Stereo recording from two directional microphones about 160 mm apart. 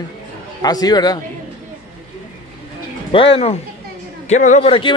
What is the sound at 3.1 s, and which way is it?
Speech, 35° left (ahead or behind).